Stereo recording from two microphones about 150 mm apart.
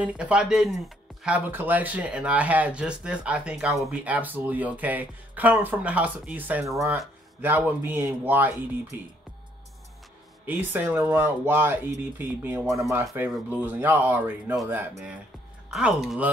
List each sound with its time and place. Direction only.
0.0 s speech: 5° right (ahead or behind)
10.4 s speech: 10° right (ahead or behind)
15.7 s speech: 5° right (ahead or behind)